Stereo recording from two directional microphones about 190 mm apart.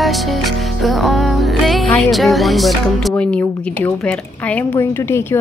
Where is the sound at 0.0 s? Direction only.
Centre (ahead or behind).